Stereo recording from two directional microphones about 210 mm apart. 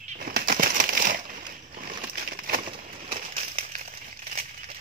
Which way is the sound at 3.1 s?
30° right (ahead or behind).